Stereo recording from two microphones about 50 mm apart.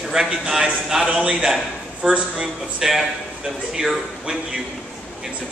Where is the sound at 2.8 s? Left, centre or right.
Centre.